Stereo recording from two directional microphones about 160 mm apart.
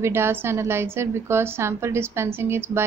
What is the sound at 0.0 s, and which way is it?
A woman's voice, 15° right (ahead or behind).